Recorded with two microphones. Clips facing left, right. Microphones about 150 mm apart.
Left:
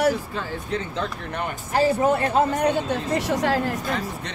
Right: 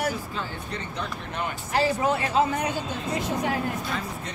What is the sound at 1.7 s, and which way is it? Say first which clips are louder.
Speech: left 4 dB; 45° left (ahead or behind).